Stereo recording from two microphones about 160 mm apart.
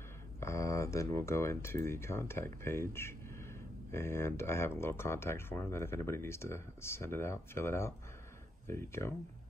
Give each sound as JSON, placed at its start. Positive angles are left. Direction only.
{"t": 0.4, "sound": "speech", "side_deg": 20}